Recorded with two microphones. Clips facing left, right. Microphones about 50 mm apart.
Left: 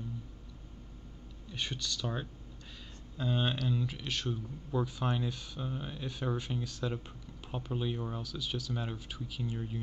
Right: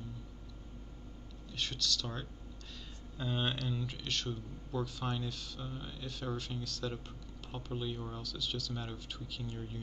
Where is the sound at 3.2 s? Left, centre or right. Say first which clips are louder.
Left 3 dB; centre.